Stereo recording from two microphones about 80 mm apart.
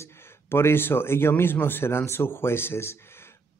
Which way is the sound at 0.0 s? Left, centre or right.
Left.